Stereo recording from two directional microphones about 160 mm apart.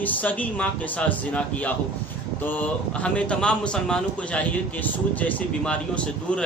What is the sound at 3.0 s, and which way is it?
A man's voice, 5° left (ahead or behind).